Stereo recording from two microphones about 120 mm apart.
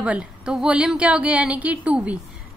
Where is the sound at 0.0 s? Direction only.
10° right (ahead or behind).